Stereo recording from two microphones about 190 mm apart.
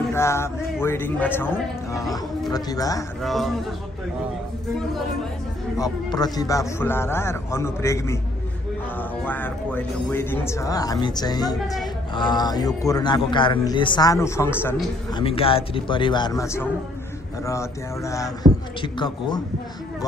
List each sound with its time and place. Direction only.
0.1 s a man's voice: 15° left (ahead or behind)
3.2 s a man's voice: centre (ahead or behind)
5.8 s a man's voice: 20° left (ahead or behind)
9.2 s a man's voice: 10° left (ahead or behind)
11.6 s a man's voice: centre (ahead or behind)
12.2 s a man's voice: 20° left (ahead or behind)
15.1 s a man's voice: 30° left (ahead or behind)